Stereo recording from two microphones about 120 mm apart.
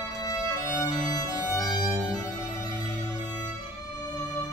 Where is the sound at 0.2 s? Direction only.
30° left (ahead or behind).